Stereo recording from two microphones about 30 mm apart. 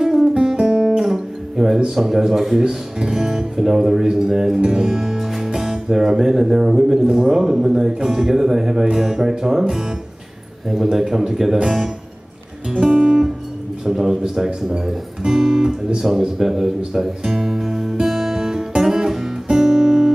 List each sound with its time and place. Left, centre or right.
0.0 s music: centre
0.9 s guitar: centre
2.0 s speech: centre
4.6 s music: centre
5.5 s speech: centre
12.9 s music: right
13.8 s speech: centre
18.0 s music: centre
19.5 s guitar: centre